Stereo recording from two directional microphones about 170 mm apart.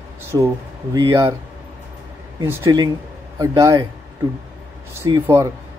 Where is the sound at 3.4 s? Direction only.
20° right (ahead or behind).